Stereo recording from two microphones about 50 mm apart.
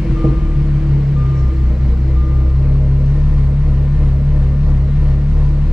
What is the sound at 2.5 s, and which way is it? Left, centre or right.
Vehicle, centre.